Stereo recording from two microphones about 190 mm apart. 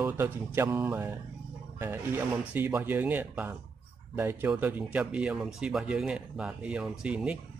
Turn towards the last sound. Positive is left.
turn(degrees=-5)  # may be behind; listen again after turning